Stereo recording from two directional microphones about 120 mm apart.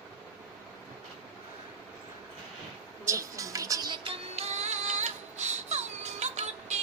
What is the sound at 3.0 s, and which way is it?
Music, 25° right (ahead or behind).